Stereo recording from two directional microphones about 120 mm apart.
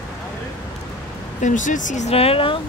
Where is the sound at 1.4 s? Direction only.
90° left.